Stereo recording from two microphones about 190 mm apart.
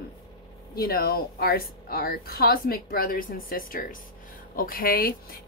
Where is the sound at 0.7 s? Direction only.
55° left (ahead or behind).